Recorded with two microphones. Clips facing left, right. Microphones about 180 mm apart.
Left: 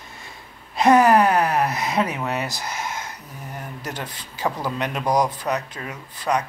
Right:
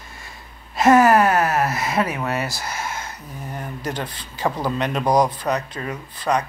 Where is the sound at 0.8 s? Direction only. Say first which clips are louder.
Right 1 dB; 15° left (ahead or behind).